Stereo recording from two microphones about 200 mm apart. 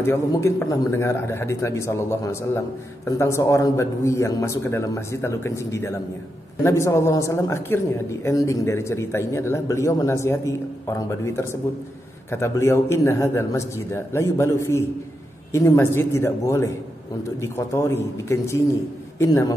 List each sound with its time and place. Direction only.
0.0 s a woman's voice: 15° left (ahead or behind)